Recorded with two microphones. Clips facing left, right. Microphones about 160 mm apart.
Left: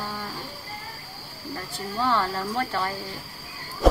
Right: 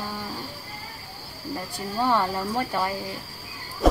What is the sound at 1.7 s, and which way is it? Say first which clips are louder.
Speech: right 1 dB; 15° right (ahead or behind).